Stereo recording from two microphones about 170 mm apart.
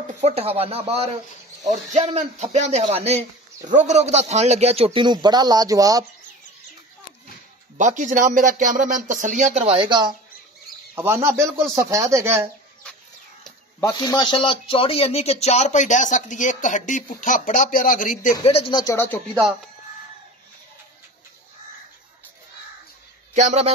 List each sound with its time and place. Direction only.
0.2 s a man's voice: 35° right (ahead or behind); by 6.0 s 20° right (ahead or behind)
7.7 s speech: 45° right (ahead or behind); by 10.1 s 30° right (ahead or behind)
11.0 s speech: 15° right (ahead or behind)
13.9 s speech: 25° left (ahead or behind); by 18.3 s 50° left (ahead or behind)
18.4 s speech: 35° left (ahead or behind)
23.3 s speech: 40° right (ahead or behind)